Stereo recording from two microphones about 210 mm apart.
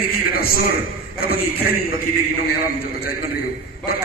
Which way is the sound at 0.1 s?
45° left (ahead or behind).